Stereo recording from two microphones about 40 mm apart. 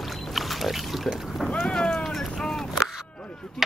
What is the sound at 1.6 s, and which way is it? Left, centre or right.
Boat, left.